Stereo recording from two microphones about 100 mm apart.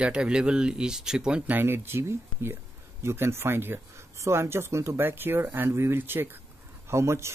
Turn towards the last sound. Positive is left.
turn(degrees=-25)  # may be behind; listen again after turning